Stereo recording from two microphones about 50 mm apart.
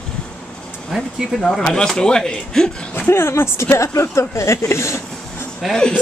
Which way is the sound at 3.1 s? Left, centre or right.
Left.